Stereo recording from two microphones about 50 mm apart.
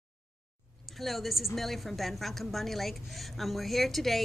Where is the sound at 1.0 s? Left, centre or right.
Centre.